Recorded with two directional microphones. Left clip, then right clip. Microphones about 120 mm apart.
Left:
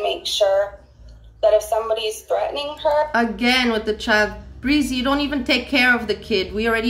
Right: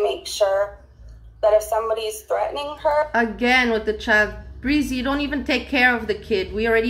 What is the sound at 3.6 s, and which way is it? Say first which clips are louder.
Speech: even; 15° left (ahead or behind).